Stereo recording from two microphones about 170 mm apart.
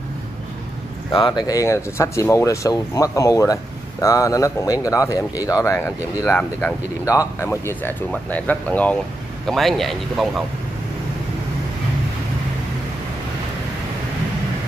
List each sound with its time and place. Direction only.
1.1 s speech: 25° left (ahead or behind); by 10.4 s centre (ahead or behind)